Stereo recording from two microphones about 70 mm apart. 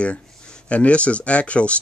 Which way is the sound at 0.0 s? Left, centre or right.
Centre.